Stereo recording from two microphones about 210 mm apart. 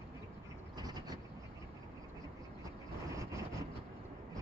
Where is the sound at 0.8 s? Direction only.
20° right (ahead or behind).